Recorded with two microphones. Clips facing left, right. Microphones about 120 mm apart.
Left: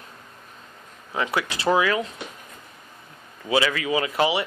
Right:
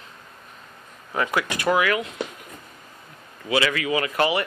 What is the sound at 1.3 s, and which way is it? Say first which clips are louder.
Speech: left 1 dB; 25° left (ahead or behind).